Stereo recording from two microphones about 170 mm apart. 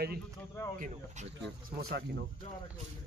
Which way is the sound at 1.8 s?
65° right (ahead or behind).